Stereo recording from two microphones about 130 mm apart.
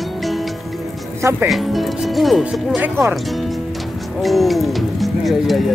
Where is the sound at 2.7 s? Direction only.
15° right (ahead or behind).